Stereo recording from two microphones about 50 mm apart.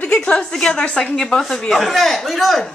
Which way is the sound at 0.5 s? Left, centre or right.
Centre.